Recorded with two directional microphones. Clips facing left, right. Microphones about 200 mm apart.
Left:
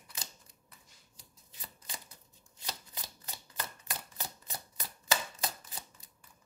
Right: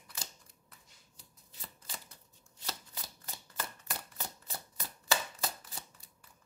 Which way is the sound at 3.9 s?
15° left (ahead or behind).